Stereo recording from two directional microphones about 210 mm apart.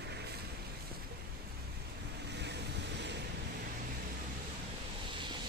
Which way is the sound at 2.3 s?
55° right (ahead or behind).